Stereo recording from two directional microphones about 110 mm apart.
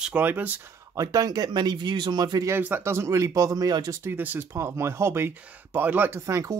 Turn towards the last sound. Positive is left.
turn(degrees=-30)  # may be behind; listen again after turning